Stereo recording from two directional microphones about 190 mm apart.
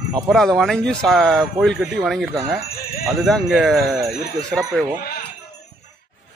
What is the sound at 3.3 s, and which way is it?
Speech, centre (ahead or behind).